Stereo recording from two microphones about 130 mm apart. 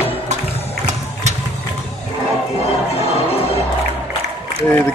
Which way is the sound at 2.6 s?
50° left (ahead or behind).